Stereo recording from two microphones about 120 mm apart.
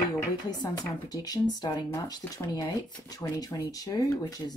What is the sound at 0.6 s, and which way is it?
Speech, 35° left (ahead or behind).